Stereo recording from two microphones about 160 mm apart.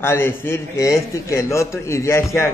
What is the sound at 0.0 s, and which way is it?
A man's voice, 15° left (ahead or behind).